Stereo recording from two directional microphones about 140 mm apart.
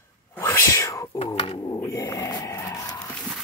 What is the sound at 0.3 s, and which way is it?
Whispering, 20° left (ahead or behind).